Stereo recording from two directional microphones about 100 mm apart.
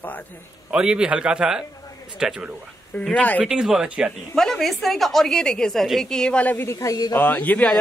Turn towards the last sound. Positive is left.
turn(degrees=15)  # may be behind; listen again after turning